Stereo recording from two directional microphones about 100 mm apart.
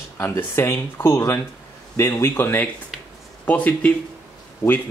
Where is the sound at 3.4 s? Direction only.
15° left (ahead or behind).